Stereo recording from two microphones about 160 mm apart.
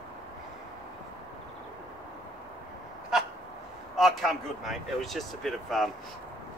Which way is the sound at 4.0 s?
Centre (ahead or behind).